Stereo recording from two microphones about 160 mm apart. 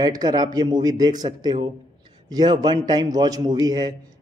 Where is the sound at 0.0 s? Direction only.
25° right (ahead or behind).